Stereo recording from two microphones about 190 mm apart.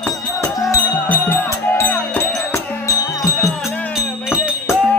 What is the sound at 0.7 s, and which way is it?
Music, 10° left (ahead or behind).